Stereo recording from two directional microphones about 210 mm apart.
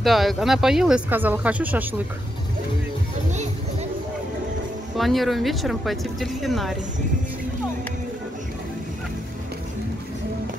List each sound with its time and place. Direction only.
0.0 s speech: centre (ahead or behind)
4.9 s speech: centre (ahead or behind)